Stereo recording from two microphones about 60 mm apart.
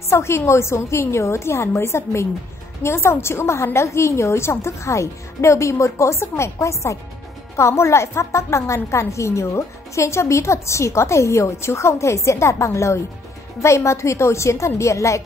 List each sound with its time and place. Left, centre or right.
0.1 s a woman's voice: left